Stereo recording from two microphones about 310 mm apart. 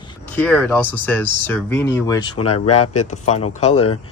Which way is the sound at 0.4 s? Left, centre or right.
Centre.